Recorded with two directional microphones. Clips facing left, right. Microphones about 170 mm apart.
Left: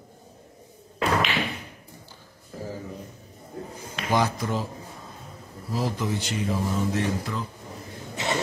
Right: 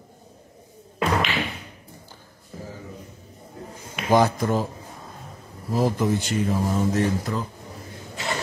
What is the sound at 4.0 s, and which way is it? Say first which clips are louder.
Speech: right 5 dB; 50° right (ahead or behind).